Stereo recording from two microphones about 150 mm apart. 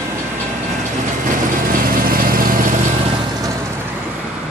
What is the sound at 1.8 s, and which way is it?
Vehicle, 75° right (ahead or behind).